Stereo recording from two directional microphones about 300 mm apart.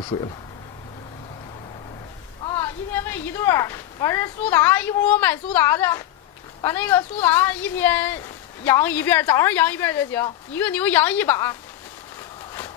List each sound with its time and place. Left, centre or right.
0.0 s a woman's voice: centre
2.4 s a woman's voice: centre